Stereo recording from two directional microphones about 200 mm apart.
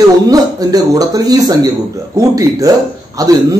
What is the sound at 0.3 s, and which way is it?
A man's voice, 20° right (ahead or behind).